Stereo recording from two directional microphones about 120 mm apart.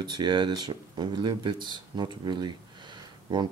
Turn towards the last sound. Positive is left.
turn(degrees=-40)  # may be behind; listen again after turning